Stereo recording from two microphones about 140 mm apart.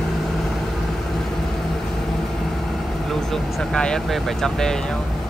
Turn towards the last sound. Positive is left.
turn(degrees=5)  # may be behind; listen again after turning